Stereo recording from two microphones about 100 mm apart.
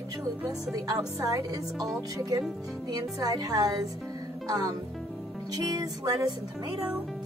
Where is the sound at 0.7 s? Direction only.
40° right (ahead or behind).